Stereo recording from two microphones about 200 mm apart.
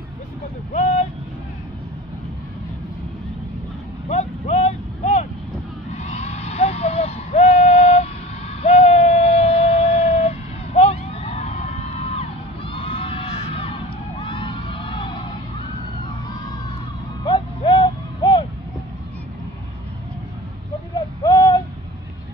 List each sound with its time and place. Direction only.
0.7 s vehicle: 35° left (ahead or behind)
4.1 s vehicle: 35° left (ahead or behind)
5.9 s a sound: 35° left (ahead or behind)
14.2 s crowd: 25° left (ahead or behind)
17.2 s a sound: 20° left (ahead or behind)
21.2 s owl: 20° left (ahead or behind)